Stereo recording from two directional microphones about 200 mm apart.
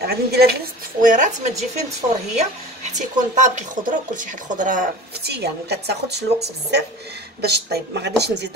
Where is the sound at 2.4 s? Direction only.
35° right (ahead or behind).